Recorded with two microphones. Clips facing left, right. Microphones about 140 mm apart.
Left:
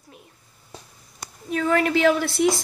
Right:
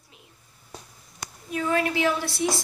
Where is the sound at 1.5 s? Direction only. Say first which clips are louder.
Left 4 dB; 70° left (ahead or behind).